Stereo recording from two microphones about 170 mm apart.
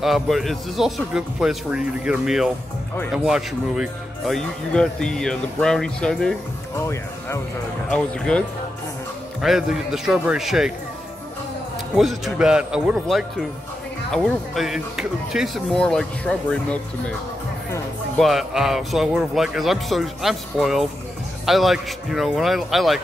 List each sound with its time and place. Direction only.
0.0 s a man's voice: centre (ahead or behind)
6.9 s speech: 15° left (ahead or behind)
7.9 s a man's voice: 5° left (ahead or behind)
11.9 s a man's voice: 5° right (ahead or behind)
18.1 s a man's voice: centre (ahead or behind)